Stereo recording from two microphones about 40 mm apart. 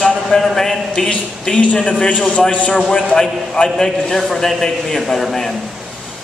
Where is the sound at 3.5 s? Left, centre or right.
Centre.